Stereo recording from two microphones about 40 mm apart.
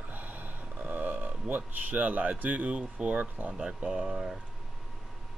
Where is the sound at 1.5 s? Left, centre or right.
Right.